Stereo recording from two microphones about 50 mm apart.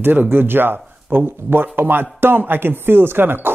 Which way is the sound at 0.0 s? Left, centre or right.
Right.